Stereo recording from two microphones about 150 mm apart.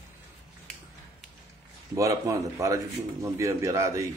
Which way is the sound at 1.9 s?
20° right (ahead or behind).